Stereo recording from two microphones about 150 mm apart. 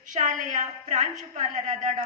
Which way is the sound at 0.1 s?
55° right (ahead or behind).